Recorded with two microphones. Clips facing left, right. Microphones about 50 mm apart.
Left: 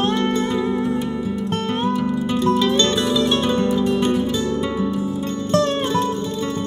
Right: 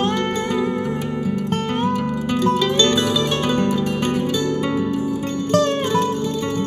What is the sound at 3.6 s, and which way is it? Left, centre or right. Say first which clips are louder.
Music: left 2 dB; right.